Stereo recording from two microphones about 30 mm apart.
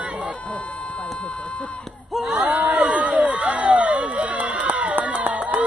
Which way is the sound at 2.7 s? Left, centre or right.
Right.